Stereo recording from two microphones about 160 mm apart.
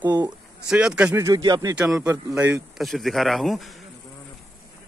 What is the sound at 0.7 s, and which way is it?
Speech, 5° right (ahead or behind).